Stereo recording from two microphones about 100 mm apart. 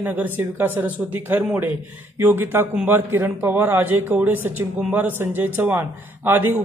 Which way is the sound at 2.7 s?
10° right (ahead or behind).